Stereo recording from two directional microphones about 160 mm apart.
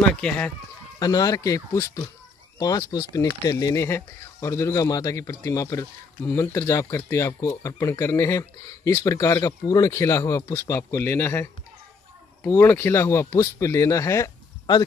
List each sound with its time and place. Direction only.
0.9 s speech: 25° left (ahead or behind)